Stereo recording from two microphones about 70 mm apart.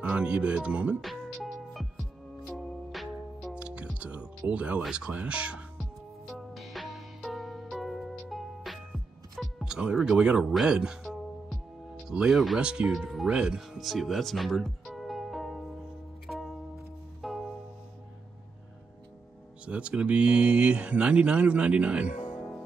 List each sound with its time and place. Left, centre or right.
0.0 s speech: centre
1.0 s music: centre
3.5 s speech: centre
5.8 s music: centre
9.7 s music: centre
10.0 s speech: centre
12.1 s speech: centre
16.3 s music: centre
19.6 s speech: centre